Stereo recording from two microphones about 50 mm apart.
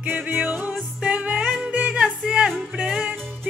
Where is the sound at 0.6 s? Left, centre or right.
Right.